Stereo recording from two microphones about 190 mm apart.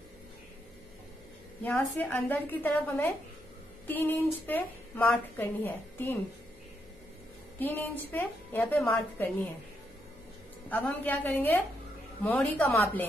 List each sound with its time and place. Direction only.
1.6 s a woman's voice: 10° left (ahead or behind)
7.5 s a woman's voice: 10° left (ahead or behind)
10.7 s a woman's voice: 10° left (ahead or behind)